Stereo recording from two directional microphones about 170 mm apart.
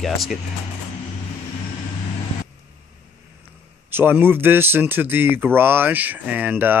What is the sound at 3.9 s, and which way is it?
Speech, 10° right (ahead or behind).